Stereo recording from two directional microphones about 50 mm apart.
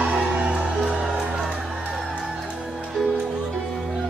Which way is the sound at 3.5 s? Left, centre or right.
Centre.